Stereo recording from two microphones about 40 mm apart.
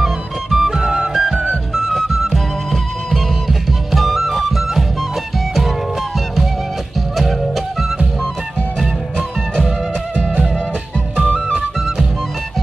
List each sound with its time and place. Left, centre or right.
0.0 s music: centre
0.7 s music: centre
1.8 s music: centre
11.2 s music: centre